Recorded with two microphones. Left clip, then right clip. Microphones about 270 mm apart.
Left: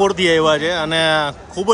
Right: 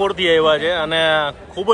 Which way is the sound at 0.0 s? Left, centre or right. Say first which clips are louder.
Left 1 dB; centre.